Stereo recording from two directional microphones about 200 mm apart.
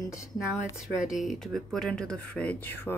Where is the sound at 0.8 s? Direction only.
Centre (ahead or behind).